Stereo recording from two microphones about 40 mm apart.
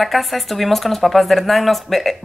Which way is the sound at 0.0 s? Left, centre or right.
Centre.